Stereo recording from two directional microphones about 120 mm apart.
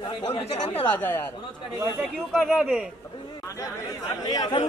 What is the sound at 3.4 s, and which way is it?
Chatter, 25° left (ahead or behind).